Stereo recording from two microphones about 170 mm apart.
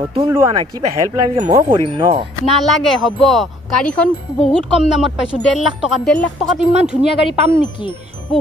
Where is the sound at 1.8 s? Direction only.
30° right (ahead or behind).